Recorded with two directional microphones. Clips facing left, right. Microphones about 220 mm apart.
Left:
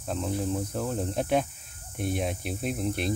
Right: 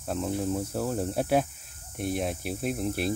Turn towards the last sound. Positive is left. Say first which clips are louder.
# right 1 dB
turn(degrees=-5)  # may be behind; listen again after turning